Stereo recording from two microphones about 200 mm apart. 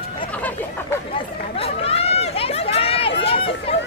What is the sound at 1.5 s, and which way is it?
Run, 30° left (ahead or behind).